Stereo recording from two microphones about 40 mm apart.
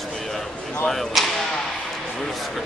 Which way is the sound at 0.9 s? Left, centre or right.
Centre.